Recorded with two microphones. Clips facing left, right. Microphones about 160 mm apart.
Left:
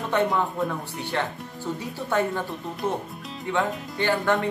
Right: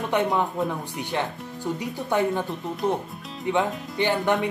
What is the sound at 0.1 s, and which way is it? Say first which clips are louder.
Speech: even; 15° right (ahead or behind).